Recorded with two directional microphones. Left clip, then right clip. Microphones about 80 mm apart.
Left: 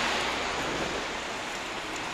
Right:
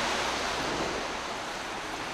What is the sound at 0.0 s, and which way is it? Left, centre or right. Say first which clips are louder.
Waves: left 1 dB; centre.